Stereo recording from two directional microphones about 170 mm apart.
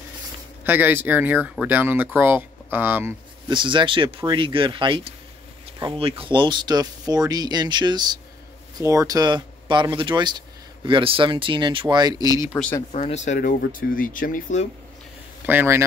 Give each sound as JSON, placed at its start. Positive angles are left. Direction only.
{"t": 0.7, "sound": "speech", "side_deg": -10}
{"t": 3.4, "sound": "speech", "side_deg": -30}
{"t": 12.9, "sound": "speech", "side_deg": 40}
{"t": 15.4, "sound": "speech", "side_deg": -15}